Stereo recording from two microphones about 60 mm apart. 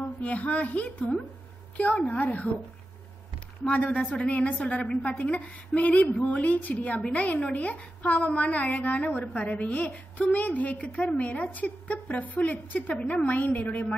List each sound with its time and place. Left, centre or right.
0.2 s a woman's voice: left
3.6 s a woman's voice: left